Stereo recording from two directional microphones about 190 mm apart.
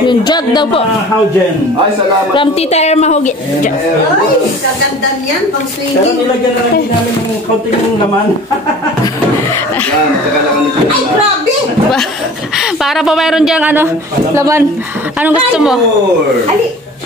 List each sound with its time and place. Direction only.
0.0 s speech: 25° left (ahead or behind)
2.3 s a woman's voice: 30° left (ahead or behind)
12.5 s a woman's voice: centre (ahead or behind)
15.5 s a woman's voice: 5° right (ahead or behind)